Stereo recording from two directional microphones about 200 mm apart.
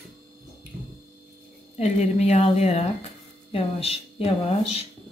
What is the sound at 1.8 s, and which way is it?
A woman's voice, 35° left (ahead or behind).